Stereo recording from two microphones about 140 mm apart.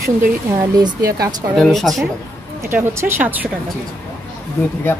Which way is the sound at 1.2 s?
30° right (ahead or behind).